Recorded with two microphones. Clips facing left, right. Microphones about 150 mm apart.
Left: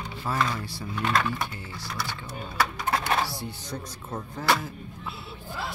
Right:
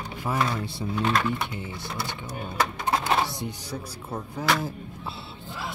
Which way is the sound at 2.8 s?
20° right (ahead or behind).